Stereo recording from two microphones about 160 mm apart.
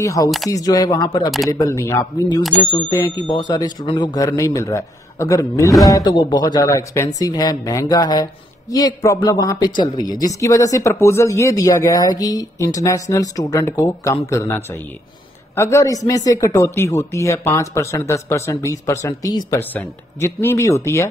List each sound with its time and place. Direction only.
0.0 s speech: 20° left (ahead or behind)